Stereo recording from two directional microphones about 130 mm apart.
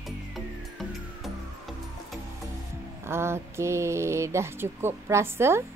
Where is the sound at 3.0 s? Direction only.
20° right (ahead or behind).